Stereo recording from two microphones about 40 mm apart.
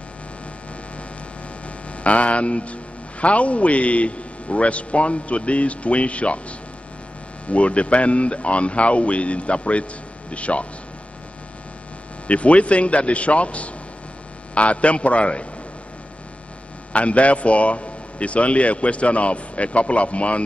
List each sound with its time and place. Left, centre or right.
1.9 s speech: left
7.4 s speech: left
12.3 s speech: left
16.9 s speech: left